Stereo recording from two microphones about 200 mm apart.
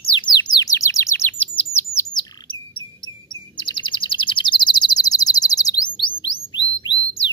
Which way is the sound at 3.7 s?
25° left (ahead or behind).